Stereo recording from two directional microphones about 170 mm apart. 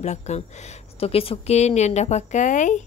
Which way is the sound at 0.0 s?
40° left (ahead or behind).